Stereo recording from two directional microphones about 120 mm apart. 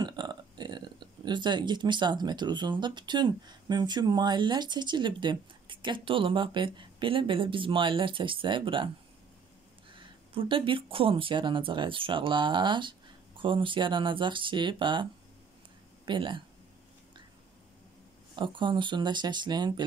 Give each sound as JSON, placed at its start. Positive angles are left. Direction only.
{"t": 0.0, "sound": "speech", "side_deg": -35}
{"t": 9.9, "sound": "speech", "side_deg": -45}
{"t": 16.1, "sound": "speech", "side_deg": -45}
{"t": 18.3, "sound": "speech", "side_deg": -40}